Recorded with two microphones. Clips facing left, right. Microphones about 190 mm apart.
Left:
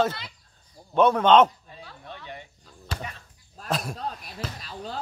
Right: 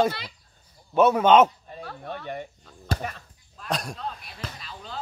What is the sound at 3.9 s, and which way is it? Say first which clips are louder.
Speech: left 2 dB; 40° left (ahead or behind).